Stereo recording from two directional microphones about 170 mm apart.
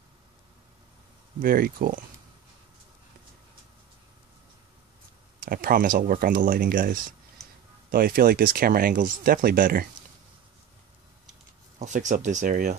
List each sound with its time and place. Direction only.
1.4 s speech: 60° right (ahead or behind)
5.4 s speech: 55° right (ahead or behind)
11.8 s speech: 45° right (ahead or behind)